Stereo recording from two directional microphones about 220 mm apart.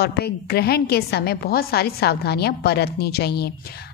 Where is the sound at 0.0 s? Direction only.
50° left (ahead or behind).